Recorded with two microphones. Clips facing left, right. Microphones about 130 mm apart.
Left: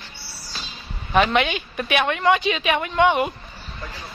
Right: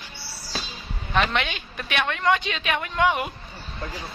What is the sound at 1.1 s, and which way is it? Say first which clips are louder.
Speech: left 5 dB; 5° left (ahead or behind).